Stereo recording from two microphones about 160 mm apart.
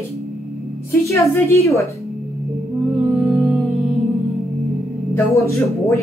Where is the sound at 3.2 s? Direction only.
5° right (ahead or behind).